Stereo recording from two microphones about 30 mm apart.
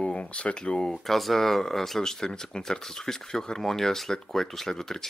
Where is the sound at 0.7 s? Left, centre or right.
Left.